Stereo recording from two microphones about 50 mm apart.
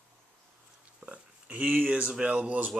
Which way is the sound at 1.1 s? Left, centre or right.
Right.